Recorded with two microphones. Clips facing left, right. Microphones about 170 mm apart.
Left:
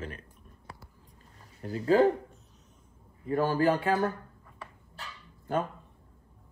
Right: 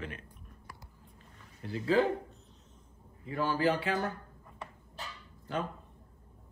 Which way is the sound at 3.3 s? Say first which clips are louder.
Left 4 dB; 45° left (ahead or behind).